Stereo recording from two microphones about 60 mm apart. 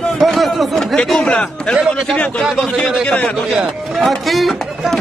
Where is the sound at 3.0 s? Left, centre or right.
Left.